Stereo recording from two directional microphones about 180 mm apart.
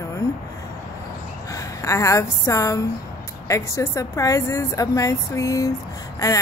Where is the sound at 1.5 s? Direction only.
15° left (ahead or behind).